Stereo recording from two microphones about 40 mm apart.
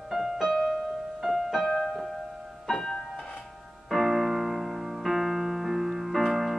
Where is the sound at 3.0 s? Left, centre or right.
Centre.